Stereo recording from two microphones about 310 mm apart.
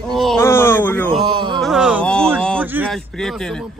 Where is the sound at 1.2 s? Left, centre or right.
Centre.